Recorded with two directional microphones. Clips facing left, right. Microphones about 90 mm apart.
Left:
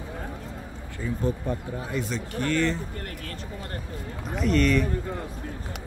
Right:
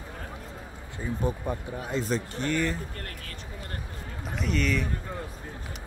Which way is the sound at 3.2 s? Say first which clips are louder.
Left 5 dB; 40° left (ahead or behind).